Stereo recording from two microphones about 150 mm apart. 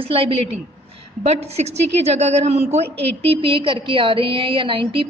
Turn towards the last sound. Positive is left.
turn(degrees=-35)  # may be behind; listen again after turning